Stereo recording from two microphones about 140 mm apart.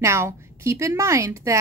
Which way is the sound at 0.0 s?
20° right (ahead or behind).